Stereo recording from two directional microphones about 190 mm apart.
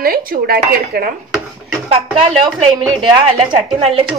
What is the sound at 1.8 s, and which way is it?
Speech, 30° right (ahead or behind).